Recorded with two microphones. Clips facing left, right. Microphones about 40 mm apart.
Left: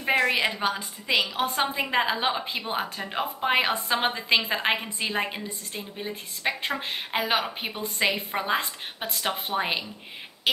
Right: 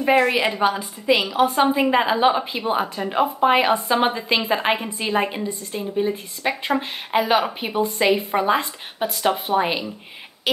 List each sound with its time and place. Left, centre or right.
0.0 s a woman's voice: centre